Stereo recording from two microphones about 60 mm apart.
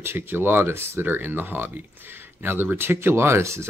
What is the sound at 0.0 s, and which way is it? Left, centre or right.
Speech, right.